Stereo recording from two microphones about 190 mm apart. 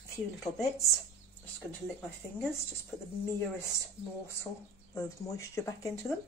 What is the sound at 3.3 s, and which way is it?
Speech, 15° left (ahead or behind).